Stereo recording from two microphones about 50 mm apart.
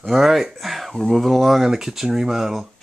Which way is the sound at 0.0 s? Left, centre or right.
Centre.